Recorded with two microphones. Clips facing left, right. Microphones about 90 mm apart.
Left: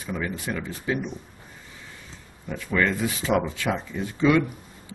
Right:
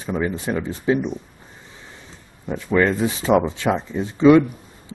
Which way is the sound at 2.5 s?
25° right (ahead or behind).